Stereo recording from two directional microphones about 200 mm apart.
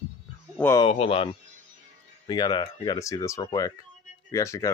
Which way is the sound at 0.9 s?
30° left (ahead or behind).